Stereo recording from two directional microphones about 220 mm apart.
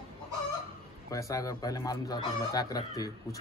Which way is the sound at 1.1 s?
15° left (ahead or behind).